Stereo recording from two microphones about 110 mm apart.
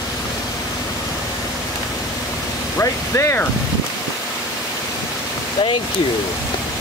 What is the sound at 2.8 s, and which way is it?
Speech, 25° left (ahead or behind).